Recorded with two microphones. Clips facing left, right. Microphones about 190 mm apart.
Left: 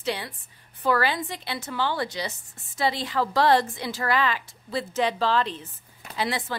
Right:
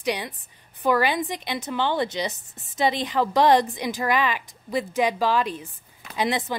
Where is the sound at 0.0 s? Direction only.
15° right (ahead or behind).